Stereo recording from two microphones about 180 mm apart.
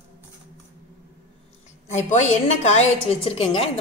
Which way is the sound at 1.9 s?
40° left (ahead or behind).